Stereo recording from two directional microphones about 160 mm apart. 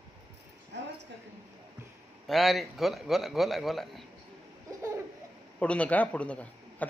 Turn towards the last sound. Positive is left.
turn(degrees=10)  # may be behind; listen again after turning